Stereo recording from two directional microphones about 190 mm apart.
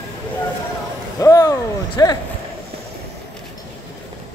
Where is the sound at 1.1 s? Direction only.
15° left (ahead or behind).